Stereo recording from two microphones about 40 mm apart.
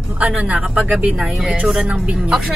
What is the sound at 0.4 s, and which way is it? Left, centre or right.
Speech, right.